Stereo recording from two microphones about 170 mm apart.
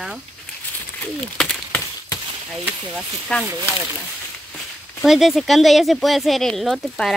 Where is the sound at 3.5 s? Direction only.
15° right (ahead or behind).